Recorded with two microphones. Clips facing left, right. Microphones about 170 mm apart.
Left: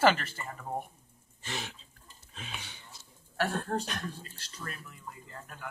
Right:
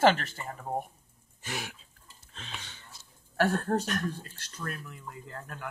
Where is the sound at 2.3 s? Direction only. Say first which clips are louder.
Even; 10° left (ahead or behind).